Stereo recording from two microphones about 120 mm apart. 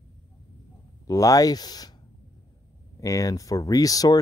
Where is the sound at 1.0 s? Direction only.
30° left (ahead or behind).